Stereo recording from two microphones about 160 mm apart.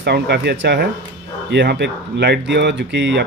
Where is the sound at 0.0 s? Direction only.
90° right.